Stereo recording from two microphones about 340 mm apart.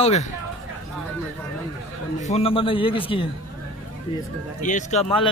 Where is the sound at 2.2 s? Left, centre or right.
Centre.